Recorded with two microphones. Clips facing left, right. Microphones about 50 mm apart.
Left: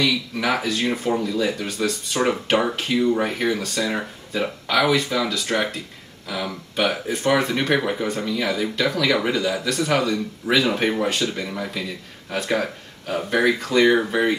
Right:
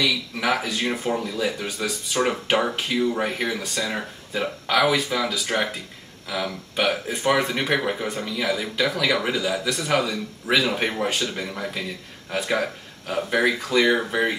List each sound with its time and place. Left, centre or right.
0.0 s speech: centre